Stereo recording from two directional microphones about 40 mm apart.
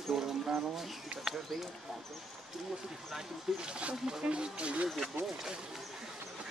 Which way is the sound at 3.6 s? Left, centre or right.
Right.